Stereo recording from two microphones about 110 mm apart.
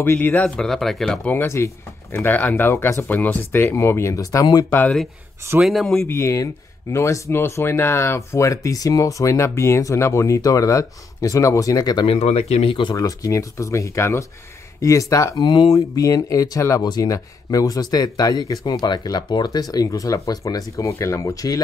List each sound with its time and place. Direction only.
0.0 s speech: 20° left (ahead or behind)
1.3 s speech: 25° left (ahead or behind)
4.6 s speech: 15° left (ahead or behind)
5.6 s speech: centre (ahead or behind)
5.9 s speech: 25° left (ahead or behind); by 12.1 s 40° left (ahead or behind)
12.1 s speech: 70° left (ahead or behind); by 12.9 s 50° left (ahead or behind)
12.9 s speech: 30° left (ahead or behind)
15.4 s speech: 40° left (ahead or behind)